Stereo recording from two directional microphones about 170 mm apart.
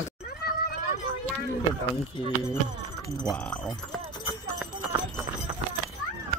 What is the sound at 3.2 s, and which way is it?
Speech, 5° left (ahead or behind).